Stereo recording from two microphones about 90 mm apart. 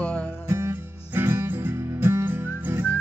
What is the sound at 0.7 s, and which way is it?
Music, 25° right (ahead or behind).